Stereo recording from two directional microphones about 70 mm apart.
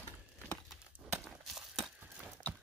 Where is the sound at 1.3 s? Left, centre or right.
Centre.